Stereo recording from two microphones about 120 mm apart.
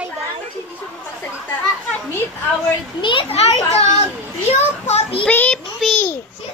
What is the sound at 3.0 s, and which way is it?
Speech, 50° left (ahead or behind).